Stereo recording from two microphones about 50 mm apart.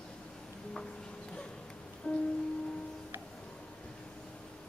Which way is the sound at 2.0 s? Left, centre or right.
Left.